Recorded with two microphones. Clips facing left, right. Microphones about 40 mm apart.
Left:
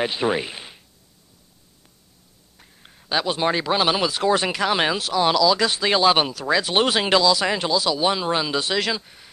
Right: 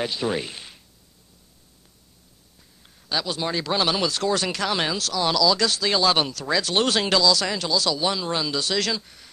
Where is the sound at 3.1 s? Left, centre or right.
Left.